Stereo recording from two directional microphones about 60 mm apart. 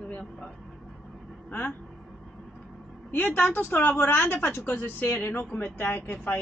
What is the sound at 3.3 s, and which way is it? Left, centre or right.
A woman's voice, left.